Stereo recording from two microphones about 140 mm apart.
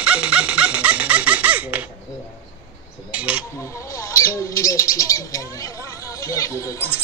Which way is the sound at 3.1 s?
10° right (ahead or behind).